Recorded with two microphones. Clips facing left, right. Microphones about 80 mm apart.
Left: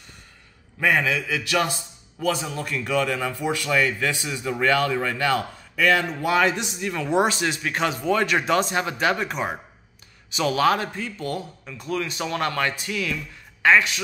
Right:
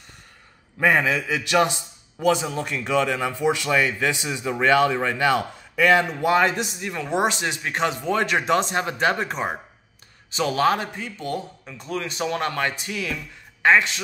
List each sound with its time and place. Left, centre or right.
0.7 s a man's voice: right
6.2 s speech: right
7.1 s speech: right